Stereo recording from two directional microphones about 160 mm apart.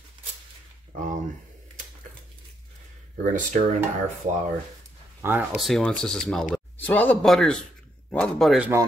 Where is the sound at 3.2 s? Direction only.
50° right (ahead or behind).